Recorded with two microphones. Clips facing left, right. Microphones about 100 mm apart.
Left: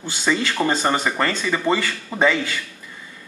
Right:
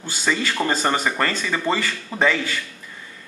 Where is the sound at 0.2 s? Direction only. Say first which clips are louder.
Left 2 dB; centre (ahead or behind).